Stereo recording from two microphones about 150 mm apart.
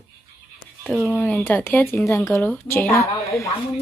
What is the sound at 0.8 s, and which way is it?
Speech, 5° left (ahead or behind).